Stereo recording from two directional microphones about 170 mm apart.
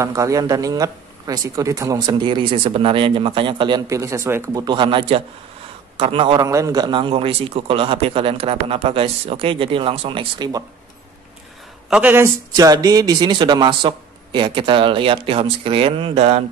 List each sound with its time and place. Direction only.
0.0 s speech: 20° right (ahead or behind)
4.6 s a man's voice: 30° right (ahead or behind)
6.4 s a man's voice: 20° right (ahead or behind)
11.9 s speech: 10° right (ahead or behind); by 16.4 s 40° right (ahead or behind)